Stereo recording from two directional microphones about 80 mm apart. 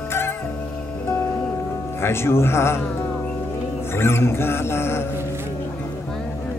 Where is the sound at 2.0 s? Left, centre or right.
Left.